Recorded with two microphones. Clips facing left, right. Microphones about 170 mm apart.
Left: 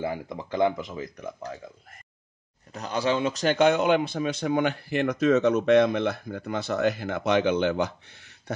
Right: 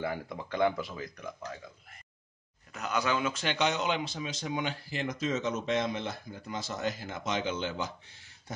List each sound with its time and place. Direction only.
0.0 s speech: 20° left (ahead or behind)
2.7 s a man's voice: 35° left (ahead or behind)
3.4 s speech: 50° left (ahead or behind)